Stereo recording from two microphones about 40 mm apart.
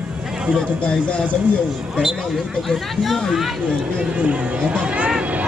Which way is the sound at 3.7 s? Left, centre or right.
Centre.